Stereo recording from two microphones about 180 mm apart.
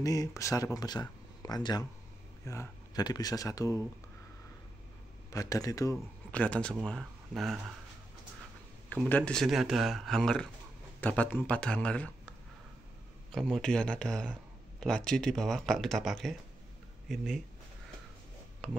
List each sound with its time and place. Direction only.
0.0 s speech: 20° left (ahead or behind)
5.3 s speech: 20° left (ahead or behind)
6.3 s speech: 5° left (ahead or behind)
8.8 s speech: 10° left (ahead or behind)